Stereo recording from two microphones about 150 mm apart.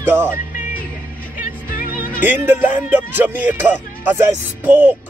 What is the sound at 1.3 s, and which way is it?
Music, 65° left (ahead or behind).